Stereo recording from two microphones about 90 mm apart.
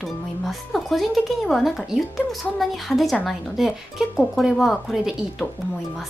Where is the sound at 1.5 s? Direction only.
Centre (ahead or behind).